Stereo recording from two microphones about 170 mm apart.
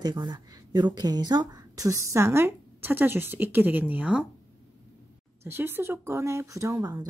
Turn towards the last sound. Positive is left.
turn(degrees=-20)  # may be behind; listen again after turning